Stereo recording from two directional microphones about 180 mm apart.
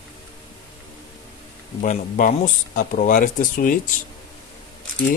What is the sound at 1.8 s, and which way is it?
Speech, 45° left (ahead or behind).